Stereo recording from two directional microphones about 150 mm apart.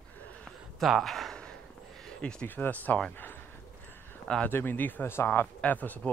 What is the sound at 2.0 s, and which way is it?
Speech, 5° left (ahead or behind).